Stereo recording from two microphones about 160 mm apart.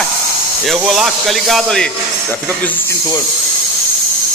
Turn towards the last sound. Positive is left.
turn(degrees=15)  # may be behind; listen again after turning